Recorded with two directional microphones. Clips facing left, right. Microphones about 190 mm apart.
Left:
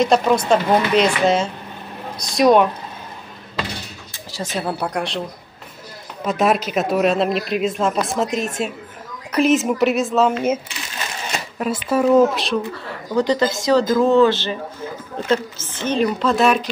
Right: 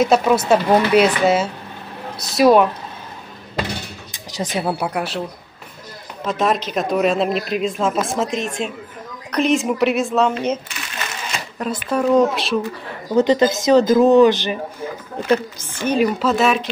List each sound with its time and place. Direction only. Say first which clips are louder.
0.0 s speech: right 1 dB; 5° right (ahead or behind)
4.1 s speech: right 2 dB; 15° right (ahead or behind)
6.2 s speech: left 1 dB; 10° left (ahead or behind)
13.1 s a woman's voice: right 3 dB; 20° right (ahead or behind); by 16.7 s centre (ahead or behind)